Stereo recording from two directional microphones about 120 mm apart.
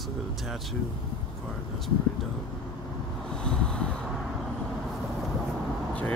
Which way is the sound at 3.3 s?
5° left (ahead or behind).